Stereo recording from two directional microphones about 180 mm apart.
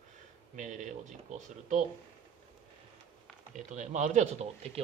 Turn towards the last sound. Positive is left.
turn(degrees=-35)  # may be behind; listen again after turning